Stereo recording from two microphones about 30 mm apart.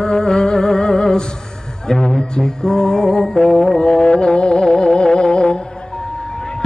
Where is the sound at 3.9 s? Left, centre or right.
Left.